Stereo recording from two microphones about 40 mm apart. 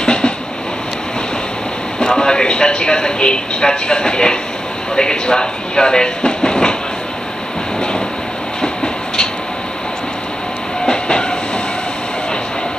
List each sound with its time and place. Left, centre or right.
0.0 s train: left
2.0 s a man's voice: centre
8.5 s train: centre
10.9 s train: left